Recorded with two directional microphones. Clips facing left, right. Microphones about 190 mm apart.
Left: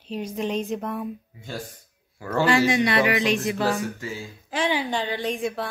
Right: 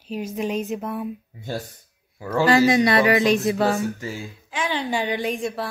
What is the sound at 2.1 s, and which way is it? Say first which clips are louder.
Speech: right 1 dB; 5° right (ahead or behind).